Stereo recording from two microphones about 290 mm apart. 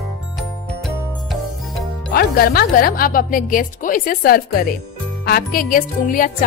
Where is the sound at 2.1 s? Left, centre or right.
Left.